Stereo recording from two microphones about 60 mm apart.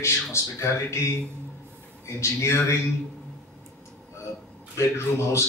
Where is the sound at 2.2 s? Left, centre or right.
Left.